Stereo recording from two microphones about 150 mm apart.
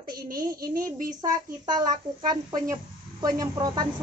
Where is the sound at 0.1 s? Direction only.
75° right (ahead or behind).